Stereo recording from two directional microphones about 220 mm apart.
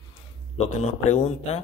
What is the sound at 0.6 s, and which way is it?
Speech, 30° left (ahead or behind).